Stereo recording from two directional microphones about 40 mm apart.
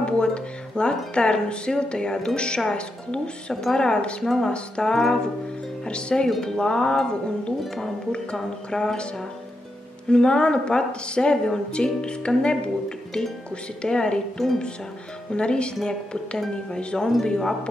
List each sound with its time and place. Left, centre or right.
0.0 s a woman's voice: left
5.9 s a woman's voice: left
8.7 s speech: centre
10.0 s a woman's voice: left
15.3 s a woman's voice: left